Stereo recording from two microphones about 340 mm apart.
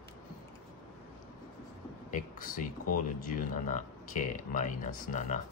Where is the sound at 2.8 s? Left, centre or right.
Left.